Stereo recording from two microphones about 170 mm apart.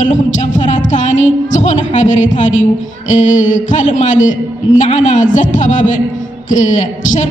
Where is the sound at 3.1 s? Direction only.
45° left (ahead or behind).